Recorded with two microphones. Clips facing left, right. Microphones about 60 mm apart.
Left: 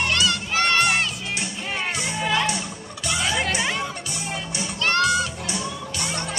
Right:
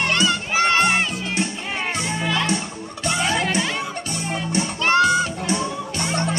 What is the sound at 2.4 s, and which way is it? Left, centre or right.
Music, right.